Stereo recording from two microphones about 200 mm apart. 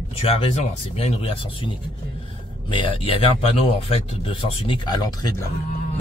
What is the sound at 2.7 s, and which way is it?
Speech, 25° left (ahead or behind).